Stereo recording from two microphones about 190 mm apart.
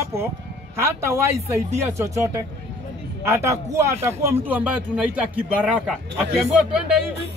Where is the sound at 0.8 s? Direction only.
15° right (ahead or behind).